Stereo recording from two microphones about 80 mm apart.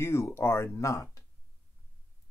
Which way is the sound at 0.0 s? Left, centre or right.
Left.